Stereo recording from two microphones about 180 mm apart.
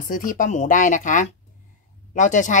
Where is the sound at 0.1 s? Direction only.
45° left (ahead or behind).